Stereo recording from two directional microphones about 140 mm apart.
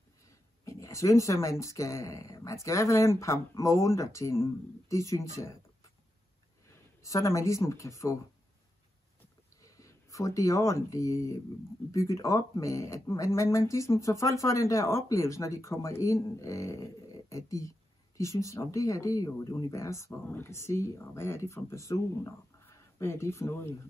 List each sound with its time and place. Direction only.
0.3 s speech: 20° left (ahead or behind)
6.7 s speech: 20° left (ahead or behind)
9.6 s speech: 25° left (ahead or behind)